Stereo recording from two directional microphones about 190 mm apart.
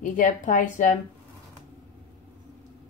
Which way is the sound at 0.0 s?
45° left (ahead or behind).